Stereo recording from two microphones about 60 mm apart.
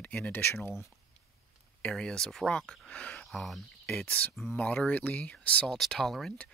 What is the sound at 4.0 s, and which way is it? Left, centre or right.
Speech, left.